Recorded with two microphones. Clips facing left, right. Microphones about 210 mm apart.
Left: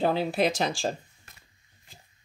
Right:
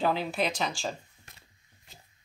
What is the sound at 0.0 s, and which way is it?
Speech, 35° left (ahead or behind).